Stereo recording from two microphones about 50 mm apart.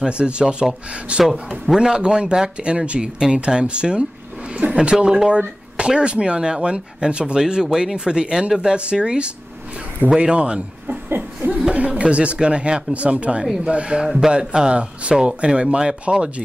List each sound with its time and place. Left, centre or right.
0.0 s speech: right
11.1 s laughter: right
11.7 s speech: right
14.0 s speech: centre